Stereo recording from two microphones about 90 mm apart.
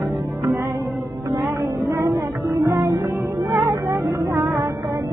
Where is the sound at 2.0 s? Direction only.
45° right (ahead or behind).